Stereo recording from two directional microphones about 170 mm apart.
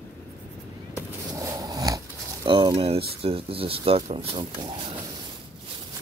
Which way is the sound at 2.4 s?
30° right (ahead or behind).